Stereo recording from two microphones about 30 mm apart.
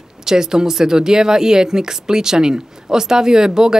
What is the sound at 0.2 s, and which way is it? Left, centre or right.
A woman's voice, right.